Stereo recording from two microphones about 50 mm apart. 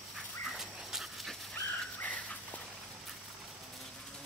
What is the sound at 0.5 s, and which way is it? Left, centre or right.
Dog, centre.